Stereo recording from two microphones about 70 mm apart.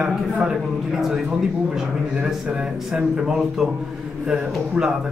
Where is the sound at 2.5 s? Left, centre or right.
Centre.